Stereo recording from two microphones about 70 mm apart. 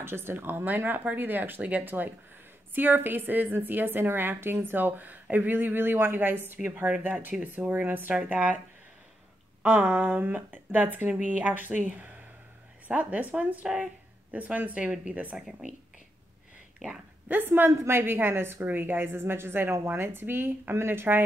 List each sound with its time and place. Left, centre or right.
0.0 s a woman's voice: right
8.1 s a woman's voice: centre
9.7 s a woman's voice: right
17.3 s a woman's voice: right